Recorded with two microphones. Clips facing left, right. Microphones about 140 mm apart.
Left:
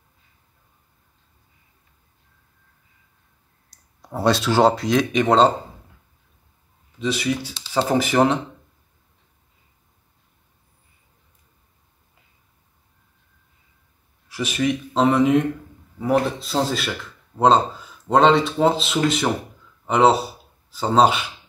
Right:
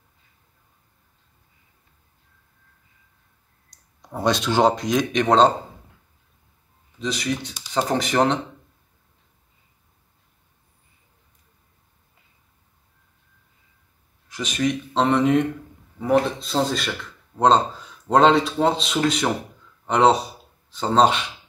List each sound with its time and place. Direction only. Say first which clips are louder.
4.0 s speech: left 2 dB; 5° left (ahead or behind)
7.0 s speech: left 3 dB; 5° left (ahead or behind)
14.3 s speech: left 1 dB; 5° left (ahead or behind)